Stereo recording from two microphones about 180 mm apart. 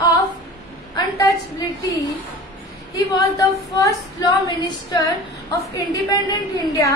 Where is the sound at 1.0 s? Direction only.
20° left (ahead or behind).